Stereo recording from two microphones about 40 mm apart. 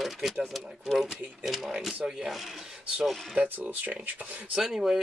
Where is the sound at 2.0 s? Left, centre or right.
Right.